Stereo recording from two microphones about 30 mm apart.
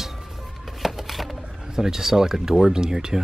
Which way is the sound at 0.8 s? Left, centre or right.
Centre.